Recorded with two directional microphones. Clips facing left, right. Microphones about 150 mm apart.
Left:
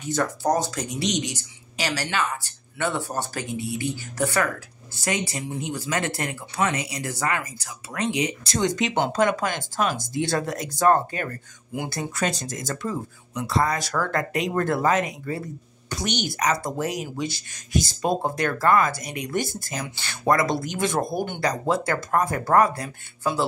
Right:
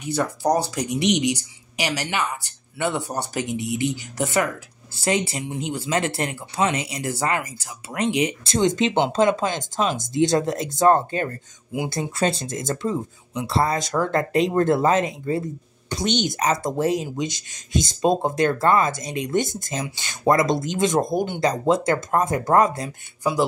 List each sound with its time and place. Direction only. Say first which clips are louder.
0.0 s a woman's voice: right 1 dB; 15° right (ahead or behind)